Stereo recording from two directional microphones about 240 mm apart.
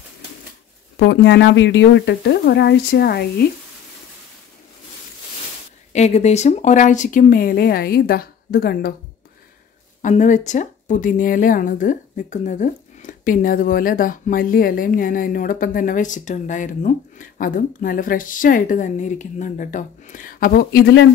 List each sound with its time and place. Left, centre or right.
0.9 s speech: left
5.9 s speech: left
10.0 s speech: left